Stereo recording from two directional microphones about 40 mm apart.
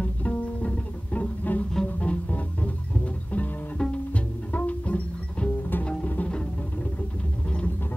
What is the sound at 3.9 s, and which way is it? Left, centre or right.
Bowed string instrument, left.